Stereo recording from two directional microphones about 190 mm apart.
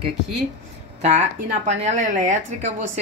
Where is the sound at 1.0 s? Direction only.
35° right (ahead or behind).